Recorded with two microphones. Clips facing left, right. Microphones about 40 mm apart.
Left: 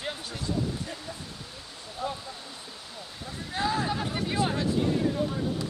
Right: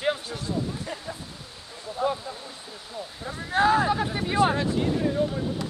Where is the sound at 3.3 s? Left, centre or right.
Right.